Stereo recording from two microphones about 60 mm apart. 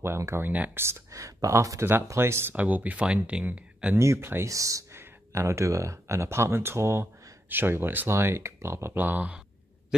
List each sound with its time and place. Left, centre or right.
0.0 s speech: right
2.1 s speech: right
2.5 s speech: right
3.9 s speech: right
4.5 s speech: right
4.9 s speech: right
7.4 s speech: right
8.1 s speech: right
8.9 s speech: right